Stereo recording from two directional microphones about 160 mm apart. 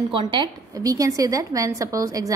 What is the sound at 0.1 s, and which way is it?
A woman's voice, 30° right (ahead or behind).